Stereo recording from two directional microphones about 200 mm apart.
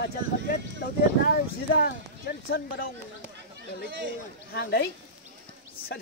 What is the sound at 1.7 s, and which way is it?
Speech, 50° left (ahead or behind).